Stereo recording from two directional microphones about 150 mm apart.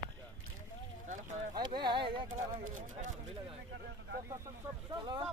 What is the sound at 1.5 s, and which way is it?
Speech, 30° right (ahead or behind).